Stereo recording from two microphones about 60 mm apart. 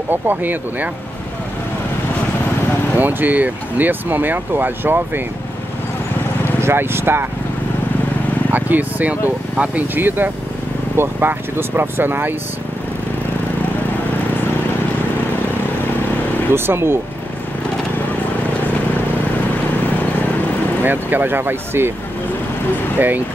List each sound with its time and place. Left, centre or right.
0.1 s speech: right
3.0 s speech: right
6.6 s speech: right
8.5 s speech: right
16.5 s speech: right
20.8 s speech: right
22.9 s speech: right